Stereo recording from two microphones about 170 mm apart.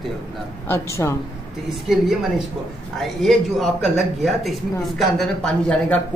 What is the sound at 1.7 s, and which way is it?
Speech, centre (ahead or behind).